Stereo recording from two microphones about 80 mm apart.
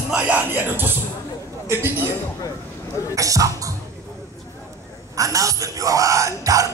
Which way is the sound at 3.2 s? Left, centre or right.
Right.